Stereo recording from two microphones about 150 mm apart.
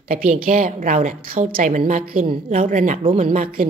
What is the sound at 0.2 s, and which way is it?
Speech, 70° right (ahead or behind).